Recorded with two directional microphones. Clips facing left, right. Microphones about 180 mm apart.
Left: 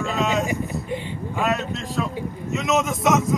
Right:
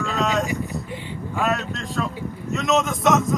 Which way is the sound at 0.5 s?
20° left (ahead or behind).